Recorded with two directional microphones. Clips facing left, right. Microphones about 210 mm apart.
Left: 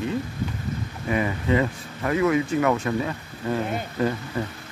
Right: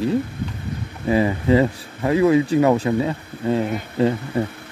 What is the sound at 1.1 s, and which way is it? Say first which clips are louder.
Speech: right 6 dB; 30° right (ahead or behind).